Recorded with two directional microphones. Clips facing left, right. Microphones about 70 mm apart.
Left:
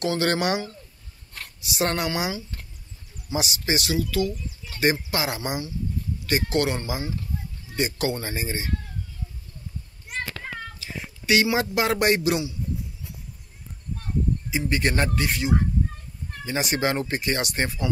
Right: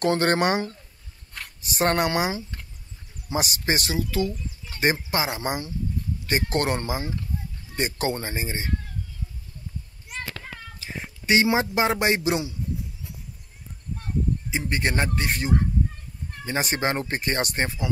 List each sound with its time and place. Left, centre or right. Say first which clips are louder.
0.0 s speech: right 2 dB; right
1.7 s speech: right 3 dB; right
3.9 s a man's voice: left 1 dB; right
5.4 s speech: right 1 dB; right
8.2 s a man's voice: even; right
10.8 s cat: even; right
11.3 s a man's voice: right 1 dB; right
14.5 s a man's voice: left 3 dB; right